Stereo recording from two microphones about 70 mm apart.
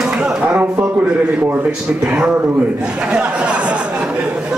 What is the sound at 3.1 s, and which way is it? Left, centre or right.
Chatter, centre.